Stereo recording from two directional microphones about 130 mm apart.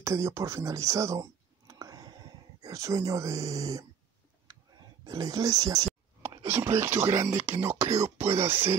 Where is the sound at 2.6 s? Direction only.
25° right (ahead or behind).